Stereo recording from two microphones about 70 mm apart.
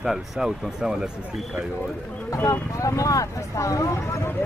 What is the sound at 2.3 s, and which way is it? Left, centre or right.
Speech, left.